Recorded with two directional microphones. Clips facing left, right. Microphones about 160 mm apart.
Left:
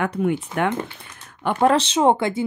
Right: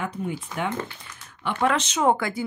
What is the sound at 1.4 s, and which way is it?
Speech, 35° left (ahead or behind).